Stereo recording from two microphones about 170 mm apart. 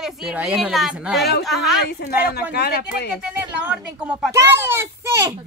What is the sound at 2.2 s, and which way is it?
Speech, 65° left (ahead or behind).